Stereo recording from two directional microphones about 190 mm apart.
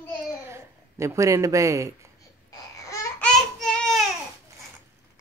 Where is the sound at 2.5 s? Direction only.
15° left (ahead or behind).